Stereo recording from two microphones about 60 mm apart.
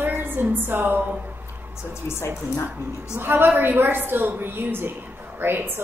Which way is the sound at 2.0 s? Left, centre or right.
Left.